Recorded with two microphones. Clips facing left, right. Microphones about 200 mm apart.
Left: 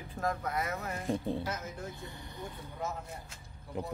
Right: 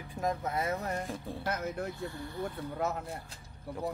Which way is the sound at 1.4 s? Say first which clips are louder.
Right 5 dB; 60° right (ahead or behind).